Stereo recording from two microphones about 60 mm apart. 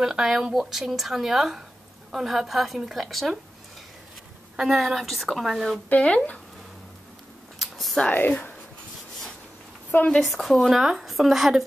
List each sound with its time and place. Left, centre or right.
0.0 s speech: centre
4.6 s speech: centre
5.9 s speech: left
7.5 s a sound: centre
8.3 s speech: left
10.2 s speech: centre